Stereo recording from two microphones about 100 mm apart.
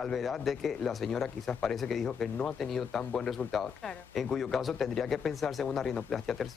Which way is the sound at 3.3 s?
Centre (ahead or behind).